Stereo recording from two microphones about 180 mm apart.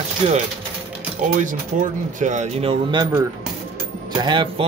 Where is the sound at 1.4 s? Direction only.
45° right (ahead or behind); by 3.1 s 30° right (ahead or behind).